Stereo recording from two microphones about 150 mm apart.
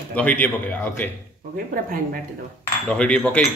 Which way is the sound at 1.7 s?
70° right (ahead or behind).